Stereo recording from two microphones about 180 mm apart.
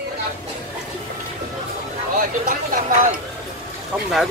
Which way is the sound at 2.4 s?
45° right (ahead or behind).